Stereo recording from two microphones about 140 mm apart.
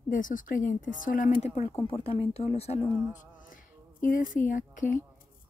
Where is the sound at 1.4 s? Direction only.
50° left (ahead or behind).